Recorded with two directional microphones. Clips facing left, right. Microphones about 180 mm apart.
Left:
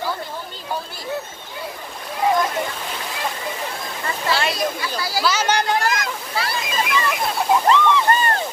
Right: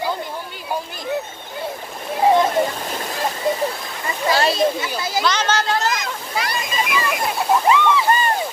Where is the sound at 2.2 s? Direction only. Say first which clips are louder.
Right 4 dB; 30° right (ahead or behind).